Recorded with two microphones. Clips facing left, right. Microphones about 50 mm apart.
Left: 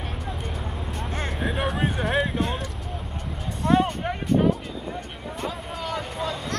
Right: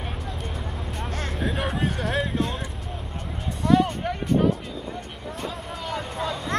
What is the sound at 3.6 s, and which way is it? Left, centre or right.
Music, left.